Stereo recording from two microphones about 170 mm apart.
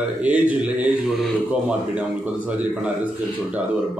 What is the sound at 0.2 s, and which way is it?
Speech, 10° right (ahead or behind).